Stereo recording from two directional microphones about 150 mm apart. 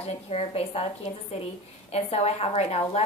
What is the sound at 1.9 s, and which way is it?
Speech, 45° left (ahead or behind).